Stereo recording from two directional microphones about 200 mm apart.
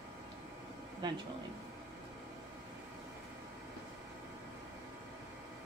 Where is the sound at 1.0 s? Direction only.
20° right (ahead or behind).